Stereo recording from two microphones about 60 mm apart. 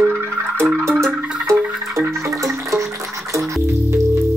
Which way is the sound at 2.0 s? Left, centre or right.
Right.